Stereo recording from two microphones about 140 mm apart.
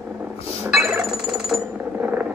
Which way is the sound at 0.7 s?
Centre (ahead or behind).